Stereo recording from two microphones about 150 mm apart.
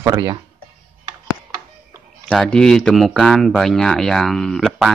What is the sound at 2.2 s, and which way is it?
Speech, 5° left (ahead or behind).